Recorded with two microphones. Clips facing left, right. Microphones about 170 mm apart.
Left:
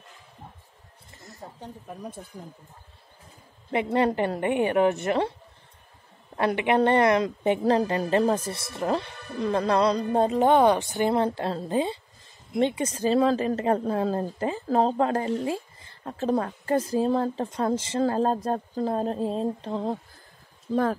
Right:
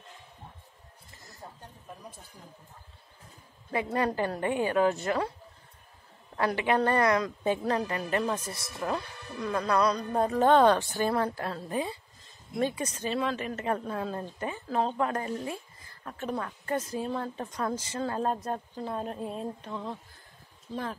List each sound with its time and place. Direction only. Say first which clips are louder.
3.7 s a woman's voice: left 5 dB; 25° left (ahead or behind)
6.3 s a woman's voice: left 4 dB; 20° left (ahead or behind)